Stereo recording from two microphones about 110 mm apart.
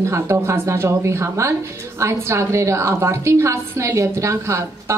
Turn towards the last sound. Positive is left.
turn(degrees=-25)  # may be behind; listen again after turning